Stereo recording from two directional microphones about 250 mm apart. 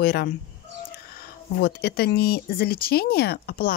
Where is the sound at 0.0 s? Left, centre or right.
Left.